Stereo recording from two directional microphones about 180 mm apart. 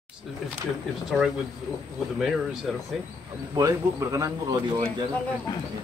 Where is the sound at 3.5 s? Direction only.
20° right (ahead or behind).